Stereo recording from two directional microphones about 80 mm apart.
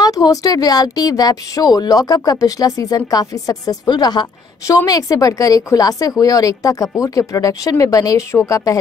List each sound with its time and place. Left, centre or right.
0.0 s a woman's voice: left
4.6 s a woman's voice: left